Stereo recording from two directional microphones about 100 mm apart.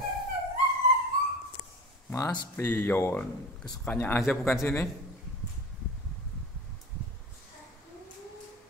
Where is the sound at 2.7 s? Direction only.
20° left (ahead or behind).